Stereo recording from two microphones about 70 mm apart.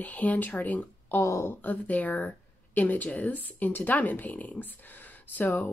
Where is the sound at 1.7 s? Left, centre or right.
Left.